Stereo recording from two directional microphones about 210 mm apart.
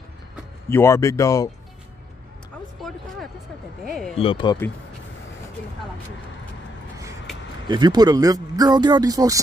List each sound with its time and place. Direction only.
0.7 s speech: 10° left (ahead or behind)
2.9 s speech: centre (ahead or behind)
4.2 s speech: 25° left (ahead or behind)
7.6 s speech: 20° right (ahead or behind)